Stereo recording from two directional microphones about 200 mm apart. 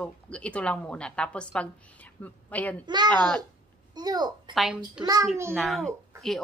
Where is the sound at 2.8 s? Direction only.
20° right (ahead or behind).